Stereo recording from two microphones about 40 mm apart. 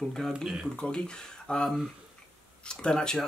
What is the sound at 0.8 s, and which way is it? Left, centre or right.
Speech, left.